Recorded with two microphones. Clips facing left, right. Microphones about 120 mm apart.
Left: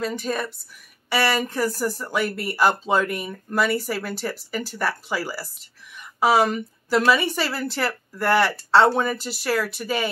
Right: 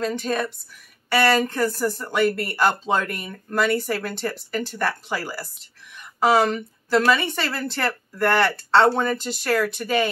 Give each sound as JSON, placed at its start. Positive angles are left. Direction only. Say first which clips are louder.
{"t": 0.0, "sound": "speech", "louder": "right 2 dB", "side_deg": 0}